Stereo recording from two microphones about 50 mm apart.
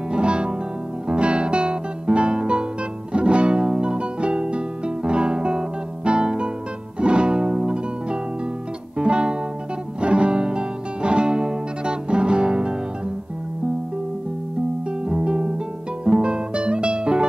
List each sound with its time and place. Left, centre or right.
0.1 s music: right
14.9 s music: centre